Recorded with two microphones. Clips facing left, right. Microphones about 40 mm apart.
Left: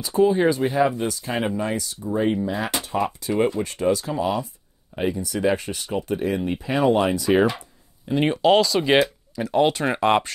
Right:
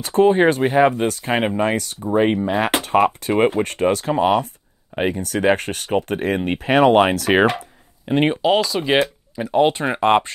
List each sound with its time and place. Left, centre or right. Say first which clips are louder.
0.0 s speech: right 4 dB; right
8.6 s speech: even; centre
9.3 s speech: right 4 dB; centre